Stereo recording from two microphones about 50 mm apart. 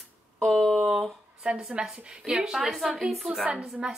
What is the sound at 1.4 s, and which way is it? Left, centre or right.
A woman's voice, centre.